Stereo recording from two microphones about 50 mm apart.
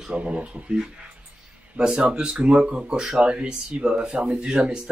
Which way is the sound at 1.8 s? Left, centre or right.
Centre.